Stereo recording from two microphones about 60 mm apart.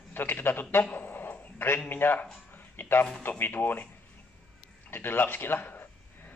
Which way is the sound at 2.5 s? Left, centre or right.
Left.